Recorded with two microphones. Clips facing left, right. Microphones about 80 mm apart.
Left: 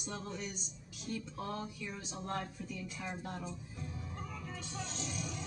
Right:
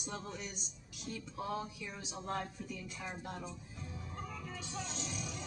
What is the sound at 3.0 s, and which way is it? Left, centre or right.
Speech, centre.